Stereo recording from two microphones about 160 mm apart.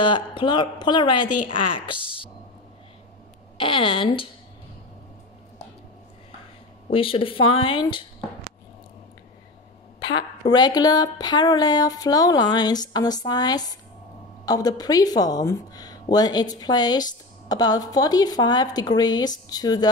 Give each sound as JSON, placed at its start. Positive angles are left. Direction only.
{"t": 0.0, "sound": "speech", "side_deg": 30}
{"t": 3.5, "sound": "speech", "side_deg": 35}
{"t": 6.9, "sound": "speech", "side_deg": 35}
{"t": 9.9, "sound": "a sound", "side_deg": 25}
{"t": 10.5, "sound": "speech", "side_deg": 25}